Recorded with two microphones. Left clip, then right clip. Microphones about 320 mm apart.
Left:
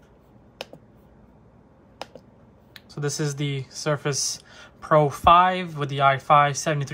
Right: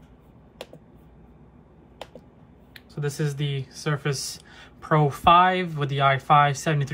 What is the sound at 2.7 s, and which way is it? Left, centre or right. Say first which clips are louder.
Speech: left 2 dB; centre.